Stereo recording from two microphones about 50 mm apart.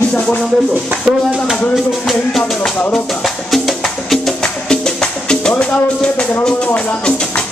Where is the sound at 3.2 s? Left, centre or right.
Centre.